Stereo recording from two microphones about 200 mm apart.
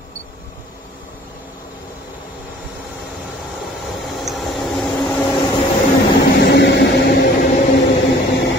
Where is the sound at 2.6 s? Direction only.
Centre (ahead or behind).